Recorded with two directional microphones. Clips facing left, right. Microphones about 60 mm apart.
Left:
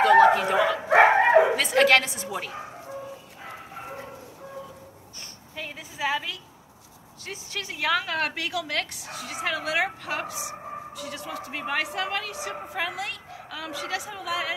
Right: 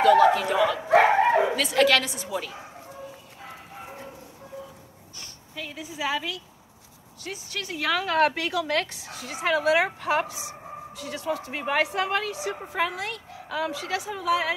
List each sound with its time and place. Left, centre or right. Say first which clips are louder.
0.0 s bow-wow: left 1 dB; left
1.6 s a woman's voice: left 1 dB; left
5.8 s a woman's voice: left 1 dB; left
7.2 s a woman's voice: right 1 dB; left
7.8 s a woman's voice: right 3 dB; centre